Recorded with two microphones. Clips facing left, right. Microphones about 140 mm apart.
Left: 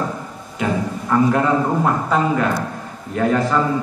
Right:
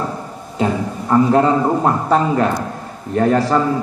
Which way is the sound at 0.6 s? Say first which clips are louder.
Right 3 dB; 30° right (ahead or behind).